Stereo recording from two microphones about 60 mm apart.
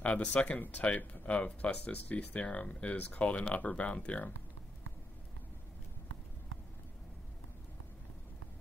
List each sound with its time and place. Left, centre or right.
0.0 s speech: left